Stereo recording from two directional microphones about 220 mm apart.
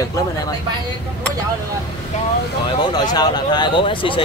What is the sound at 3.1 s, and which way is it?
Speech, 20° left (ahead or behind).